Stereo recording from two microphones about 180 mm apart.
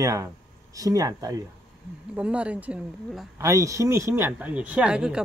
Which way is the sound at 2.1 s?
5° right (ahead or behind).